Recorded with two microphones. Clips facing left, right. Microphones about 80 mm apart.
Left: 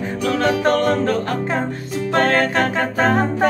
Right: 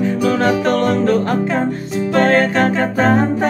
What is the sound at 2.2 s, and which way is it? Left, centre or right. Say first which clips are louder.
A capella: right 4 dB; right.